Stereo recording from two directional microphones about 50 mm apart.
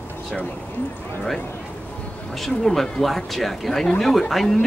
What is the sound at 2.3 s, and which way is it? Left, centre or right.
Speech, centre.